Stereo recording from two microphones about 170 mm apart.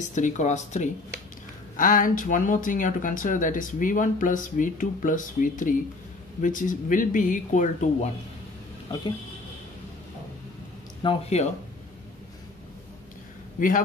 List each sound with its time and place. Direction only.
0.1 s speech: 45° left (ahead or behind)
11.0 s speech: 35° left (ahead or behind)
13.6 s a man's voice: 50° left (ahead or behind)